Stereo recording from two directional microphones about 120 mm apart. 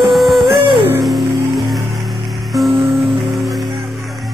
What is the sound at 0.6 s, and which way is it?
Music, 45° right (ahead or behind).